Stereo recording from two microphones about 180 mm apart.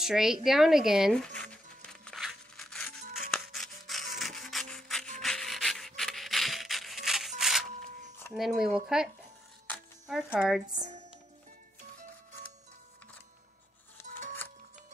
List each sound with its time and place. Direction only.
0.0 s music: centre (ahead or behind)
5.2 s rub: centre (ahead or behind)
8.3 s speech: centre (ahead or behind)
10.7 s speech: 40° right (ahead or behind)